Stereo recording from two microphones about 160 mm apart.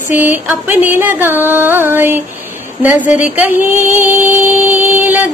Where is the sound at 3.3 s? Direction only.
10° right (ahead or behind).